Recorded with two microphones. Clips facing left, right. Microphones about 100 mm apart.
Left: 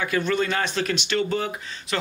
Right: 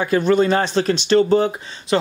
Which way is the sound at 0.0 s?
35° right (ahead or behind).